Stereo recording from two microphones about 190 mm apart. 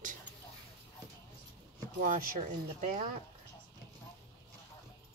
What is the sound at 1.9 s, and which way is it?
Speech, 45° right (ahead or behind).